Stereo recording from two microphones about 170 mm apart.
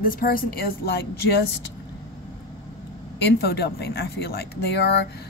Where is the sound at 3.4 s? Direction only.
70° left (ahead or behind).